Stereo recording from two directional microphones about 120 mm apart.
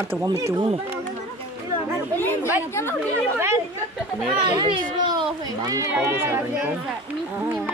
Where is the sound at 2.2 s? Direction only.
15° left (ahead or behind).